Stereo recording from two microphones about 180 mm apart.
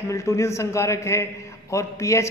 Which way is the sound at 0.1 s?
15° left (ahead or behind).